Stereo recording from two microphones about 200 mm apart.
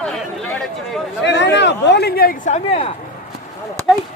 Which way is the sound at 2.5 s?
30° left (ahead or behind).